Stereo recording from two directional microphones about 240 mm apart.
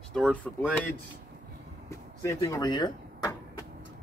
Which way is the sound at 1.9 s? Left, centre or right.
Centre.